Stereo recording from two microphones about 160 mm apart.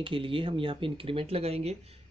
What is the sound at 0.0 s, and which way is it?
Speech, 35° right (ahead or behind).